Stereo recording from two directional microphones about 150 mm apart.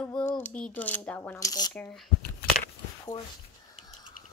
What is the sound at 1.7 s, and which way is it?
Speech, 5° left (ahead or behind).